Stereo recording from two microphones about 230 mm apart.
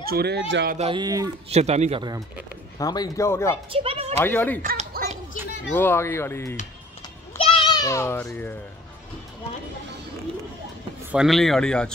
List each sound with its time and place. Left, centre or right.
0.0 s speech: right
0.7 s speech: right
1.5 s speech: right
2.8 s speech: centre
3.7 s a sound: right
4.2 s speech: centre
4.6 s a sound: right
5.7 s speech: centre
7.3 s children playing: left
11.1 s speech: centre